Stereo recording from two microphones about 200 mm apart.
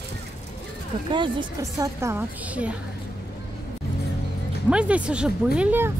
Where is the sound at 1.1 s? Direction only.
25° right (ahead or behind); by 2.7 s 5° right (ahead or behind).